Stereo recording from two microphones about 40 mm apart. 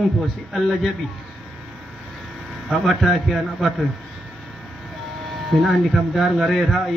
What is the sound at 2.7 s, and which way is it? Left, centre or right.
A man's voice, centre.